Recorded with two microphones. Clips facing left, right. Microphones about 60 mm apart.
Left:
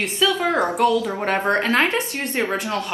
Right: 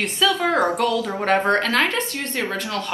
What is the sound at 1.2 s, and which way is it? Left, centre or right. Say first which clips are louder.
Speech: right 2 dB; centre.